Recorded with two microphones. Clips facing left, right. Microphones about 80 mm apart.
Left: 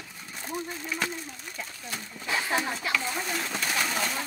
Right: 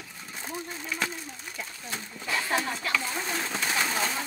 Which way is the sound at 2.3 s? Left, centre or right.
Centre.